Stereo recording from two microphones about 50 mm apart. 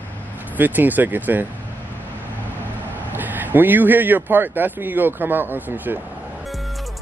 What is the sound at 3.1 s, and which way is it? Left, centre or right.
Speech, right.